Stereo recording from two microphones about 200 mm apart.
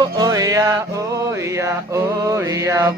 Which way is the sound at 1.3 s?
15° right (ahead or behind).